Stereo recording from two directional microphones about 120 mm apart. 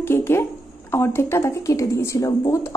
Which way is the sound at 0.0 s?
20° left (ahead or behind).